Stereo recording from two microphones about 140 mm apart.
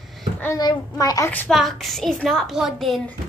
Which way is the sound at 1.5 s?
Centre (ahead or behind).